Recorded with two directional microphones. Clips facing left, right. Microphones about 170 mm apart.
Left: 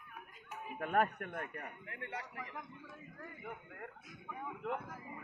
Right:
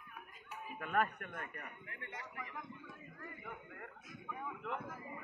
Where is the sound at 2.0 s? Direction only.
25° left (ahead or behind).